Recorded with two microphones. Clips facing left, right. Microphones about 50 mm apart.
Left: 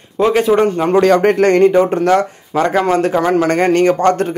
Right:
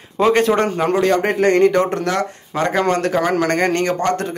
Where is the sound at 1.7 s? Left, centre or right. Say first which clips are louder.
Left 5 dB; centre.